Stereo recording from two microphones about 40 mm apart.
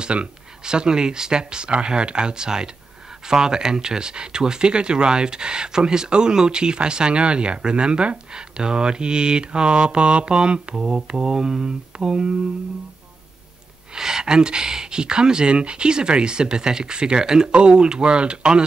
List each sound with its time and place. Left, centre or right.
0.0 s speech: right
13.9 s speech: centre